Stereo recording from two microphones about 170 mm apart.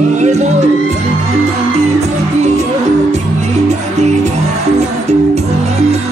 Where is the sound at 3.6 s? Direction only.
40° right (ahead or behind).